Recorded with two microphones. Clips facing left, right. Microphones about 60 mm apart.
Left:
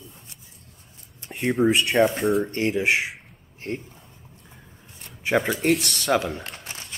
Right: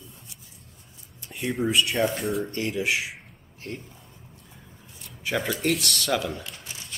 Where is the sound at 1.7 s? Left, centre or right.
Left.